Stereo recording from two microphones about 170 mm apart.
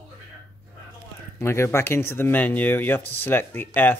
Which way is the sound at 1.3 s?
15° left (ahead or behind).